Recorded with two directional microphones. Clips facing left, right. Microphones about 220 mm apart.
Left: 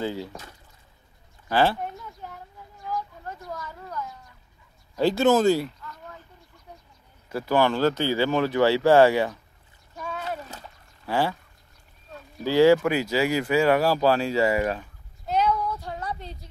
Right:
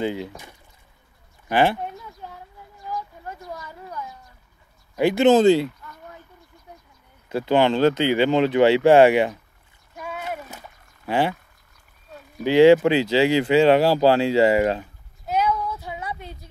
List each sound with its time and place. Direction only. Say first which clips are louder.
0.0 s speech: right 4 dB; 15° right (ahead or behind)
1.5 s a sound: right 2 dB; 15° right (ahead or behind)
2.9 s speech: even; 15° right (ahead or behind)
7.2 s speech: right 3 dB; 20° right (ahead or behind)
9.9 s splash: right 1 dB; 10° right (ahead or behind)
11.1 s speech: right 3 dB; 20° right (ahead or behind)
12.4 s speech: right 4 dB; 20° right (ahead or behind)
15.2 s child singing: right 1 dB; 5° right (ahead or behind)